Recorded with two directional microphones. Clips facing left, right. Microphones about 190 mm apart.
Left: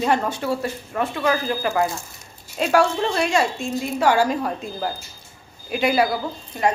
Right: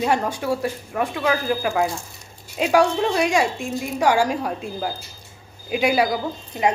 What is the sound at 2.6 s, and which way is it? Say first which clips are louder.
A woman's voice: right 1 dB; 10° right (ahead or behind).